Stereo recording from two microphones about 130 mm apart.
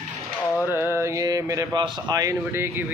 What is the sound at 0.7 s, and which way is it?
Speech, 20° right (ahead or behind).